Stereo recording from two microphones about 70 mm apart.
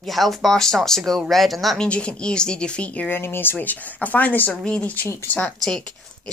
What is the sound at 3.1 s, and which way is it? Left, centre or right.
Speech, left.